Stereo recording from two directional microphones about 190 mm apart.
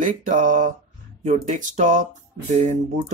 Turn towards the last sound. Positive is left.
turn(degrees=-40)  # may be behind; listen again after turning